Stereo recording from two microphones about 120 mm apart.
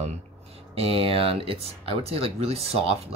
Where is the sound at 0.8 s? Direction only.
50° right (ahead or behind).